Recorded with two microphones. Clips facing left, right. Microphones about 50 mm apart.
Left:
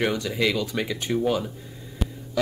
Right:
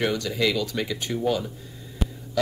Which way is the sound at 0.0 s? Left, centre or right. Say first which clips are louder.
Even; centre.